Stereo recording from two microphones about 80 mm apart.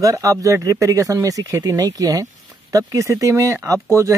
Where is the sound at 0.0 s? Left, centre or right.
Right.